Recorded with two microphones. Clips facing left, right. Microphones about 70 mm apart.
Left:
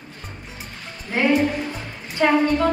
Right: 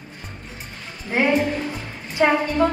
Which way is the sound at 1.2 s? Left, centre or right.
Right.